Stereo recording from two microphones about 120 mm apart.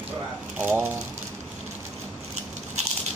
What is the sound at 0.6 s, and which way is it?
Speech, 20° right (ahead or behind).